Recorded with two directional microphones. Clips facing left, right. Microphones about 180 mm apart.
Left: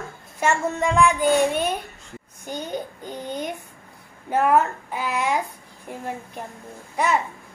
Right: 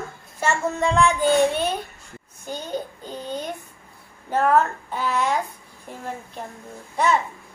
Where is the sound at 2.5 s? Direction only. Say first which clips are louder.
Even; 15° left (ahead or behind).